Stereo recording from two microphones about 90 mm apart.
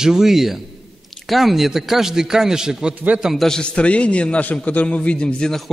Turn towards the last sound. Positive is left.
turn(degrees=5)  # may be behind; listen again after turning